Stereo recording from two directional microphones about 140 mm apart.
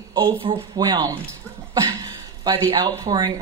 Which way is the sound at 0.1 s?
35° right (ahead or behind).